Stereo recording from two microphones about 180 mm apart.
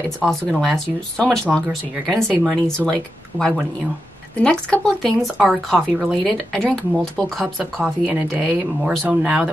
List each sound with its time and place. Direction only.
0.2 s speech: 5° left (ahead or behind)